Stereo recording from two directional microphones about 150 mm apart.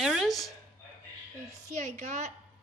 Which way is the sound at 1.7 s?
55° right (ahead or behind).